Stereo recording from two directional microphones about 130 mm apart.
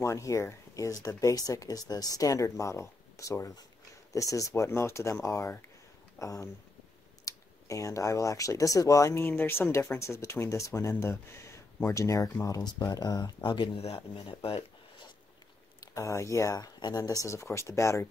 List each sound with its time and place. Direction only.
0.0 s speech: 25° left (ahead or behind)
13.7 s speech: 50° left (ahead or behind)
15.8 s speech: 25° left (ahead or behind)